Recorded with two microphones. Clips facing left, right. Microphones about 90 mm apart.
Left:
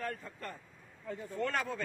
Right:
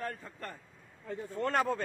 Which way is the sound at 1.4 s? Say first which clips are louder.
Right 5 dB; 40° right (ahead or behind).